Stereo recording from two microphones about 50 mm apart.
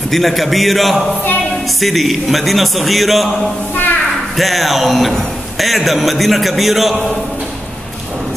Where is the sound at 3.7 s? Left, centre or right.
Left.